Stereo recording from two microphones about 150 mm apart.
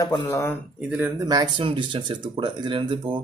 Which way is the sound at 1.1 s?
25° right (ahead or behind).